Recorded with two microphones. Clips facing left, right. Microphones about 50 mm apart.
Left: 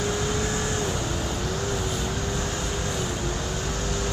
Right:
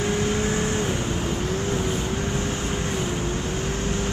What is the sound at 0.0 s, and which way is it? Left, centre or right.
Vehicle, right.